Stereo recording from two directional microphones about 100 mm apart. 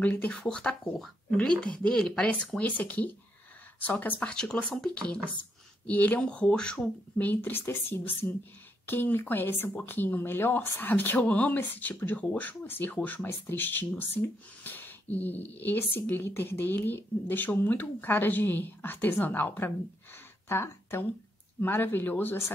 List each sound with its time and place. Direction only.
0.0 s speech: 15° left (ahead or behind)